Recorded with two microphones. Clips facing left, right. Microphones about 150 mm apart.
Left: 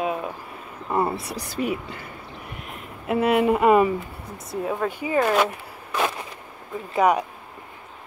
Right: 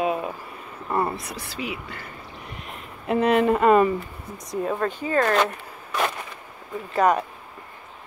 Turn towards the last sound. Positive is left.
turn(degrees=10)  # may be behind; listen again after turning